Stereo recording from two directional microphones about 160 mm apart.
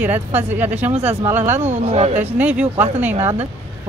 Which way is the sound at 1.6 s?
40° right (ahead or behind).